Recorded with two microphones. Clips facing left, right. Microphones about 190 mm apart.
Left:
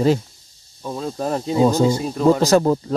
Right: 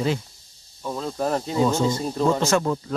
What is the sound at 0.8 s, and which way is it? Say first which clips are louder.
Speech: left 1 dB; 15° left (ahead or behind).